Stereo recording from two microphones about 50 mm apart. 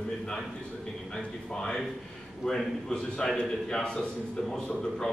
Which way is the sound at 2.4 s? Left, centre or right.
Centre.